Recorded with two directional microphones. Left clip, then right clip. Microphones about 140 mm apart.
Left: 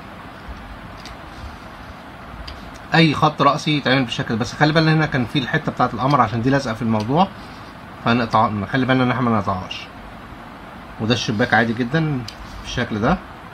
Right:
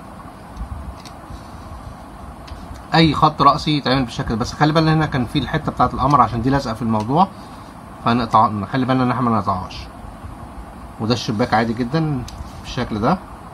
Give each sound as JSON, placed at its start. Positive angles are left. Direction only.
{"t": 2.9, "sound": "speech", "side_deg": 0}
{"t": 11.0, "sound": "speech", "side_deg": 0}